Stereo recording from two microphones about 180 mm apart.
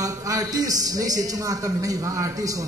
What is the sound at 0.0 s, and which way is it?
A man's voice, 20° right (ahead or behind).